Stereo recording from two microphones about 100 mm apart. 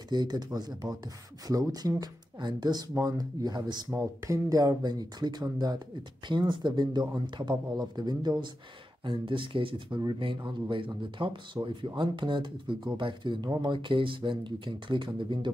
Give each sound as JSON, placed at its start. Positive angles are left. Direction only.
{"t": 0.1, "sound": "speech", "side_deg": -45}
{"t": 3.9, "sound": "speech", "side_deg": -30}
{"t": 9.0, "sound": "speech", "side_deg": -55}